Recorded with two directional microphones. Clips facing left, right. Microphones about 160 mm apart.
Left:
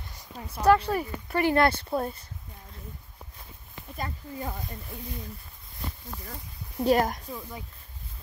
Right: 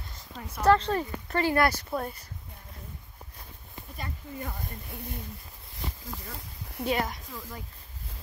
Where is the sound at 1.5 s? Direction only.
25° left (ahead or behind).